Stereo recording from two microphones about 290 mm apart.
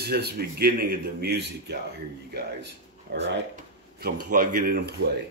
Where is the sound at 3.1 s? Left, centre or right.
Right.